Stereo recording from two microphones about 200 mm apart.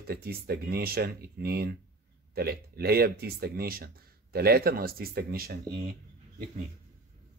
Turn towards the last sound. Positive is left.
turn(degrees=-50)  # may be behind; listen again after turning